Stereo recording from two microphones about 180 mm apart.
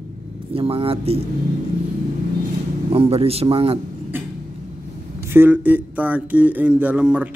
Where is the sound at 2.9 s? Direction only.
35° right (ahead or behind).